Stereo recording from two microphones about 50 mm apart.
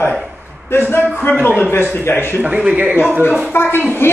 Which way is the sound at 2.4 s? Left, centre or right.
Right.